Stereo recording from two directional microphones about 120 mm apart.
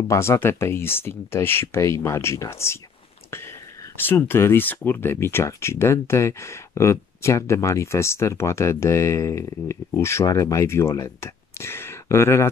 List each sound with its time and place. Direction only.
0.1 s speech: 20° left (ahead or behind)
4.0 s speech: 15° left (ahead or behind)